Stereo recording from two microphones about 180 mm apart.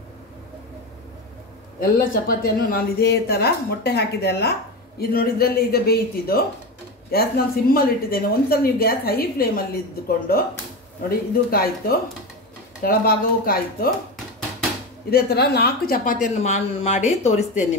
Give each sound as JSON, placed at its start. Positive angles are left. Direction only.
{"t": 2.2, "sound": "a woman's voice", "side_deg": 60}
{"t": 15.0, "sound": "speech", "side_deg": 60}